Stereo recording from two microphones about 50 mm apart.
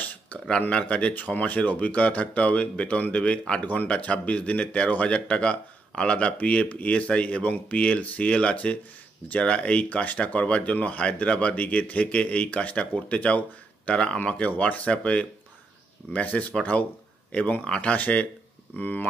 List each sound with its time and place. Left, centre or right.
0.0 s a sound: left
0.5 s speech: left
1.1 s speech: left